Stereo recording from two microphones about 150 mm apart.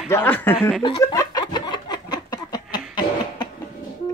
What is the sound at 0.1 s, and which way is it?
Speech, 15° left (ahead or behind).